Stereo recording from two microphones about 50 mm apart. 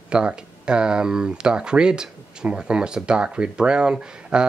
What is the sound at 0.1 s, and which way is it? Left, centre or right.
Speech, centre.